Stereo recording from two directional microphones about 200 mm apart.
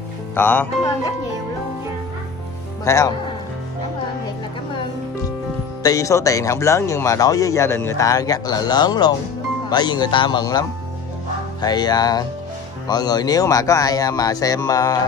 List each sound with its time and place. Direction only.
0.3 s speech: 10° left (ahead or behind)
2.8 s speech: 15° left (ahead or behind)
5.8 s speech: 15° left (ahead or behind)